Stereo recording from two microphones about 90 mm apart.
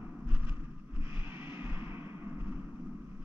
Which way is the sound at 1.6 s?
25° right (ahead or behind).